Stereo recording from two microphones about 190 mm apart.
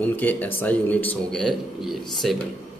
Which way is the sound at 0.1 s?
10° left (ahead or behind).